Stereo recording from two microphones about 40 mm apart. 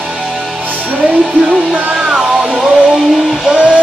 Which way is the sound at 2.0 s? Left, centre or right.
Centre.